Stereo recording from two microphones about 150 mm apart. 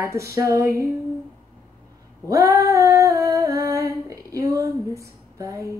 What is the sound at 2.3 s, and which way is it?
Female singing, 20° right (ahead or behind).